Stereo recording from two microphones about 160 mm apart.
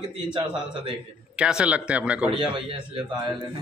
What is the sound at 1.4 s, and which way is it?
Speech, 5° right (ahead or behind).